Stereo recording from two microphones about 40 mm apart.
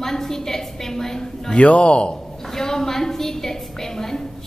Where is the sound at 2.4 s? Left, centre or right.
Centre.